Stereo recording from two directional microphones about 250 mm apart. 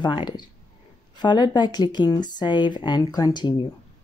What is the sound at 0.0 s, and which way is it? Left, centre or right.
Speech, centre.